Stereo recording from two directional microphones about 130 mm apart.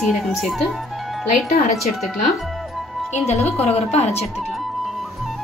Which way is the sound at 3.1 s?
55° left (ahead or behind).